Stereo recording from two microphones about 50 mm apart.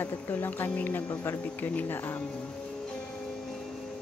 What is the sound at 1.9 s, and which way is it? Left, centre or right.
Speech, left.